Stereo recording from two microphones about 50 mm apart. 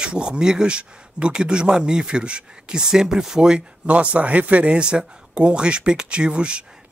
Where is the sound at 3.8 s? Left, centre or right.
Right.